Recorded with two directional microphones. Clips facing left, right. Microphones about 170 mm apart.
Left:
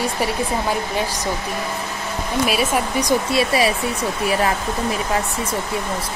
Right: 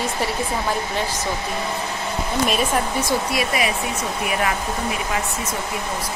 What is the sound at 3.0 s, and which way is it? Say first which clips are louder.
Speech: left 3 dB; 15° left (ahead or behind).